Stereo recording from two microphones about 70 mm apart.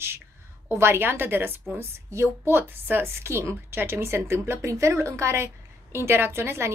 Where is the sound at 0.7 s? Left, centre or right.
Right.